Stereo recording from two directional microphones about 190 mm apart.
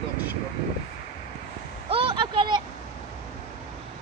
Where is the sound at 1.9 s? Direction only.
30° right (ahead or behind).